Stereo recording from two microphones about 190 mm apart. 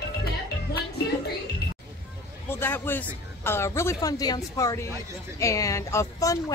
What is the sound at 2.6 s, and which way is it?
Speech, 10° left (ahead or behind).